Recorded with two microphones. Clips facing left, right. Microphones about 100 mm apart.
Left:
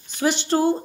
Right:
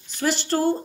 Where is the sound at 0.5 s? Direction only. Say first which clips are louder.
Left 3 dB; 20° left (ahead or behind).